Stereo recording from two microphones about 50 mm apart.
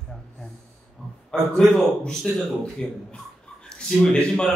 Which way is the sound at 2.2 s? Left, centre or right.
Centre.